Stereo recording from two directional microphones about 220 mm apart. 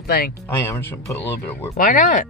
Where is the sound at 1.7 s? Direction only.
35° left (ahead or behind).